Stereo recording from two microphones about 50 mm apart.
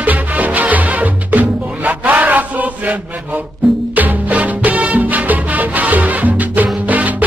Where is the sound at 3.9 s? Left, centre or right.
Right.